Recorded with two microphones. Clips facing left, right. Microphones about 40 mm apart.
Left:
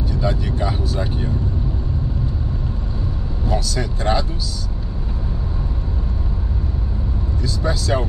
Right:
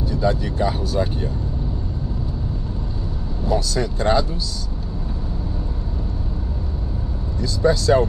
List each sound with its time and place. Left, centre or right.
0.2 s speech: centre
3.5 s speech: centre
7.4 s speech: centre